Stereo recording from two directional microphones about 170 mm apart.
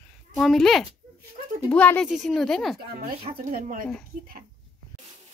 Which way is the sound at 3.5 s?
55° right (ahead or behind).